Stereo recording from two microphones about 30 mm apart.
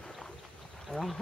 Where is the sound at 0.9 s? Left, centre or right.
Centre.